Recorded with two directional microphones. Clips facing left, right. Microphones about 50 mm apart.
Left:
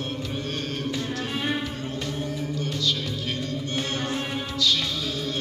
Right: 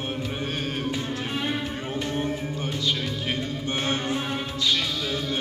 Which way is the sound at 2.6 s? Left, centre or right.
Right.